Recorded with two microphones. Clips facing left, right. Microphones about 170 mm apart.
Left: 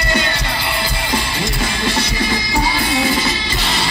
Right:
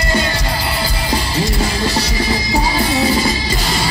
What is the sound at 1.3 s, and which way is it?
Music, 35° right (ahead or behind).